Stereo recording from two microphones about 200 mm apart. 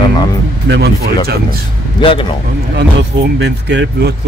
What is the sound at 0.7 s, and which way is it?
Speech, 55° right (ahead or behind).